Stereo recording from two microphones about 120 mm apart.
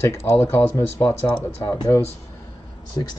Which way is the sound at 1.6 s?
35° left (ahead or behind).